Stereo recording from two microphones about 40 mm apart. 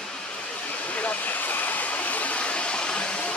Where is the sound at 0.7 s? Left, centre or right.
Left.